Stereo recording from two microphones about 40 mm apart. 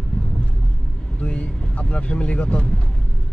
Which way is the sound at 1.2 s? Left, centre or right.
Left.